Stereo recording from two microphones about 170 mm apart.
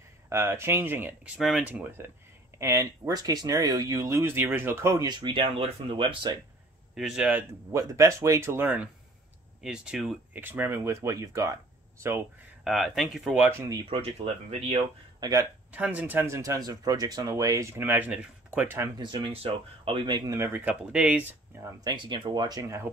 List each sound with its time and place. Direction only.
0.3 s speech: 15° right (ahead or behind); by 6.3 s 30° right (ahead or behind)
7.0 s speech: 5° right (ahead or behind)
7.9 s speech: 20° right (ahead or behind)
12.6 s speech: centre (ahead or behind)
13.8 s speech: 35° right (ahead or behind)
15.1 s speech: 25° right (ahead or behind)
15.7 s speech: 10° right (ahead or behind)
18.9 s speech: 30° right (ahead or behind)
20.3 s speech: 15° right (ahead or behind)
21.8 s speech: 25° right (ahead or behind)